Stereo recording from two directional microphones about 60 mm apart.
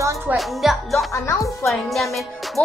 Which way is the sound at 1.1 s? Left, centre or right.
Left.